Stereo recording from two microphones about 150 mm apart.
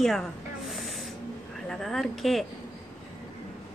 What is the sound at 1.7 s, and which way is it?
Speech, centre (ahead or behind).